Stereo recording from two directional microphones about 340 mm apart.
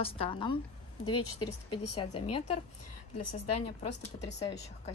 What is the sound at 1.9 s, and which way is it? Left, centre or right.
Speech, centre.